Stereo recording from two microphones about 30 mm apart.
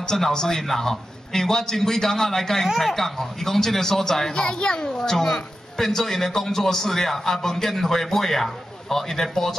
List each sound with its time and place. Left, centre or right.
0.2 s a child's voice: centre
4.4 s a child's voice: left
4.9 s a woman's voice: centre